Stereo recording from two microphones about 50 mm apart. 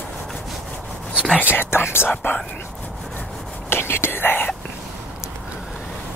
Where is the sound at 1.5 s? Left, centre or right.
Left.